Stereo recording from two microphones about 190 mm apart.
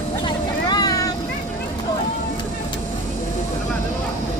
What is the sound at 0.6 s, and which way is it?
Vehicle, 20° left (ahead or behind).